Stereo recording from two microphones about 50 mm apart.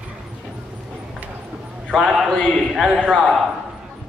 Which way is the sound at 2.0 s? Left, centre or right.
Centre.